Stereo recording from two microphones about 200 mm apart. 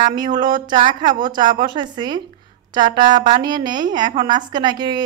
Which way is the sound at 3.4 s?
20° right (ahead or behind).